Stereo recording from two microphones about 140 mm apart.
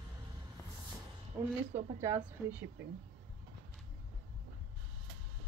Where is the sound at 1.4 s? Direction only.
20° right (ahead or behind).